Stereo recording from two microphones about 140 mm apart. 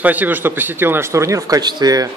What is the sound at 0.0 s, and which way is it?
Speech, 10° right (ahead or behind).